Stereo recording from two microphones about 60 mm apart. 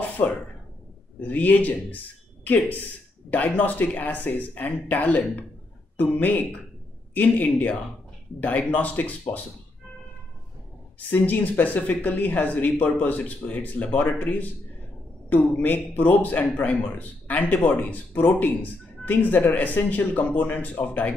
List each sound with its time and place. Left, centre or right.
1.2 s a man's voice: left
3.3 s a man's voice: left
11.0 s a man's voice: left